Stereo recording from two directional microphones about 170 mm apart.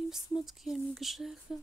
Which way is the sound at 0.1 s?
Centre (ahead or behind).